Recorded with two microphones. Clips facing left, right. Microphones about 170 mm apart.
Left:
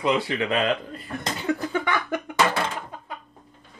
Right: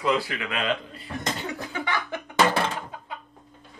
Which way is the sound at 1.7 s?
50° left (ahead or behind).